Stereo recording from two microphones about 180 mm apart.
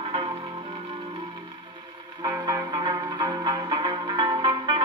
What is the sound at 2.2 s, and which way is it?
Music, 25° right (ahead or behind).